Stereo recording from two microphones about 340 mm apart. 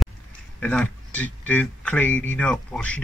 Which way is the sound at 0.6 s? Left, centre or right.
Centre.